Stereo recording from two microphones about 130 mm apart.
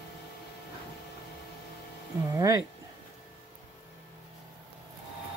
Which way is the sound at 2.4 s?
30° right (ahead or behind).